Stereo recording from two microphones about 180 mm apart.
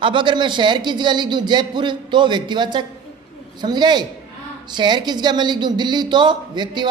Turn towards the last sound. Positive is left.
turn(degrees=-25)  # may be behind; listen again after turning